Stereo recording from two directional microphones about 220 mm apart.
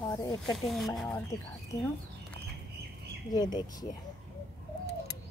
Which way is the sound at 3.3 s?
20° left (ahead or behind).